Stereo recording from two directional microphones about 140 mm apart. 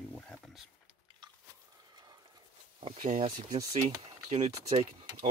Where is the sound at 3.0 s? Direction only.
55° right (ahead or behind).